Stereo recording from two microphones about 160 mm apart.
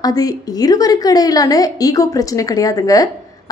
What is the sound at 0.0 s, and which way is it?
A woman's voice, 20° left (ahead or behind).